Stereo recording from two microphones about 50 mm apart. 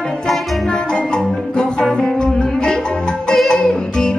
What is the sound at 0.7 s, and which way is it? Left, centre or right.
Music, centre.